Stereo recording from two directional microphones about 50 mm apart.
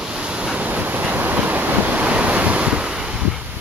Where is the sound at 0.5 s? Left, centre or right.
Right.